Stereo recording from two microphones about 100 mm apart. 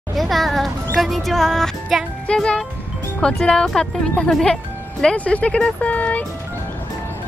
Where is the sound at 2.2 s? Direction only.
10° left (ahead or behind).